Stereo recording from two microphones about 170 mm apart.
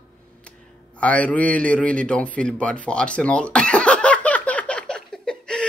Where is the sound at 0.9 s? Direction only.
10° left (ahead or behind).